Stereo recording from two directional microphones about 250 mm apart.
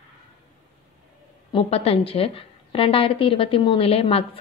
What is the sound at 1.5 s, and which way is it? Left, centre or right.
A woman's voice, left.